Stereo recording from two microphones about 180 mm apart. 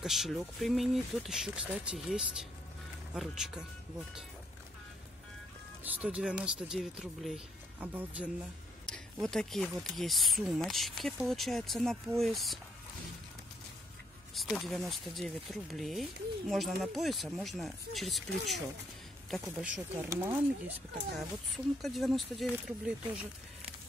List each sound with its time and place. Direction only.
0.0 s speech: centre (ahead or behind)
5.9 s speech: 10° right (ahead or behind)
8.8 s speech: 5° left (ahead or behind)
14.3 s speech: centre (ahead or behind); by 20.7 s 15° right (ahead or behind)
21.8 s speech: centre (ahead or behind)